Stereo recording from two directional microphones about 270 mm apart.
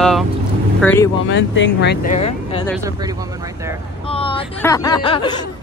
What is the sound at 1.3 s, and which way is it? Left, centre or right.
Speech, left.